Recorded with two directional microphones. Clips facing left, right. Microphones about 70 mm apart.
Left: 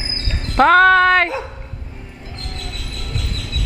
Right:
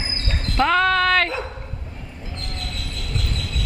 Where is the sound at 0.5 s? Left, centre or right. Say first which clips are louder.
Left 7 dB; left.